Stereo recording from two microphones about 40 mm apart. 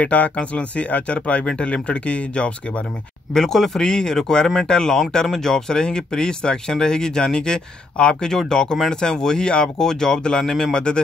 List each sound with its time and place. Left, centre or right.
0.0 s speech: left
1.4 s a man's voice: centre
1.7 s speech: left
3.3 s speech: centre
10.7 s a man's voice: left